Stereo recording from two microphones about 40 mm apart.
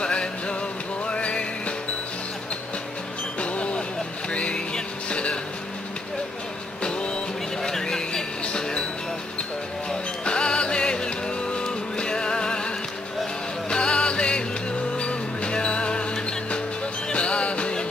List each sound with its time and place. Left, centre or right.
0.0 s music: left
3.3 s vehicle: left
5.1 s a sound: left
6.8 s music: left
7.6 s music: centre
9.8 s music: left